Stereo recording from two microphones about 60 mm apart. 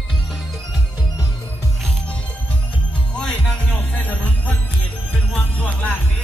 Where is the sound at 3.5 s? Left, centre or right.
Left.